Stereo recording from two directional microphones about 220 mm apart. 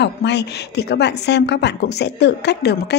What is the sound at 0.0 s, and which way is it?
A woman's voice, 50° left (ahead or behind).